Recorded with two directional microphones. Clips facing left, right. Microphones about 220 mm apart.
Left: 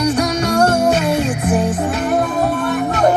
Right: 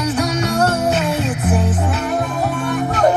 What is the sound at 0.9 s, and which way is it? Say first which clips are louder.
Music: left 3 dB; 15° left (ahead or behind).